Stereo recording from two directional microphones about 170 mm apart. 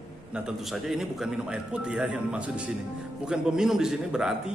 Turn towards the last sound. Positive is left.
turn(degrees=-5)  # may be behind; listen again after turning